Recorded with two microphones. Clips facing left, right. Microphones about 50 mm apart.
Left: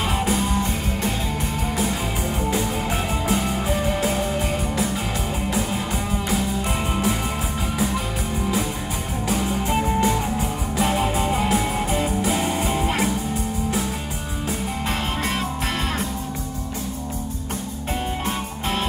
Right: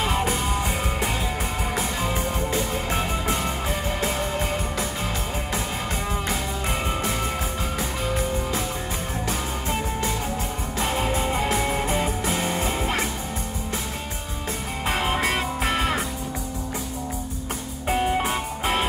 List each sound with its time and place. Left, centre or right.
0.0 s music: centre
2.5 s music: centre
6.6 s music: centre
9.7 s music: centre
10.8 s music: centre
14.9 s music: centre
17.8 s music: centre